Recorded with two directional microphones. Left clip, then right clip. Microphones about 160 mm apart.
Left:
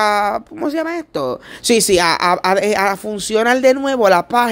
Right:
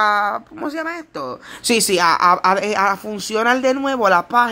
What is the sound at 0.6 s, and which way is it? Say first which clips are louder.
Speech: left 5 dB; 40° left (ahead or behind).